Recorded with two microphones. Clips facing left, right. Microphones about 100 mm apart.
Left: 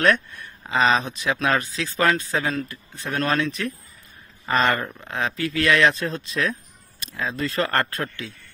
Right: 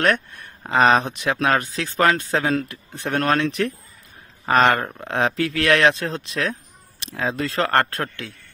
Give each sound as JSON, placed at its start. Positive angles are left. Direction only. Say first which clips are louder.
{"t": 0.3, "sound": "speech", "louder": "right 3 dB", "side_deg": -60}